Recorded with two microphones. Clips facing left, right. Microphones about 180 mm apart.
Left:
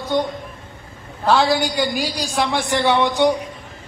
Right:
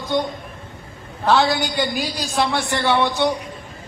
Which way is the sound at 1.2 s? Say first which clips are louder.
Left 1 dB; 5° left (ahead or behind).